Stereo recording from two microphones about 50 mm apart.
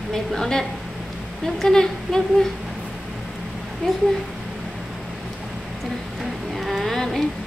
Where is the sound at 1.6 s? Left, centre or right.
Centre.